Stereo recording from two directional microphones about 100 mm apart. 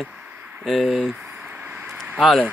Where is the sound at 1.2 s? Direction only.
15° right (ahead or behind).